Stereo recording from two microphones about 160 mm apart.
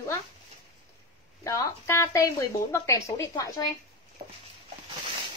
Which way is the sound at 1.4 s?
20° left (ahead or behind).